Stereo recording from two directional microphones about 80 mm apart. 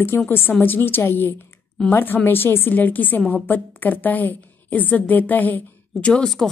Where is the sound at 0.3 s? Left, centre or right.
Left.